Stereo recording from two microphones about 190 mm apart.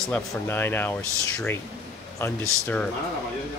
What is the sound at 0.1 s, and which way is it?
Speech, 10° left (ahead or behind).